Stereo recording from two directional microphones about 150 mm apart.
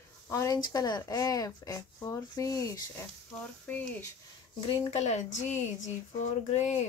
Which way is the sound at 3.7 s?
10° left (ahead or behind).